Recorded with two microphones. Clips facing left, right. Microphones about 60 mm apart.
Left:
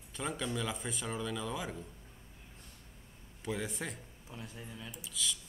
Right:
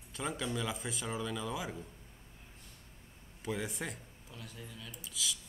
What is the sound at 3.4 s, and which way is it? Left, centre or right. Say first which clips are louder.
Speech: even; centre.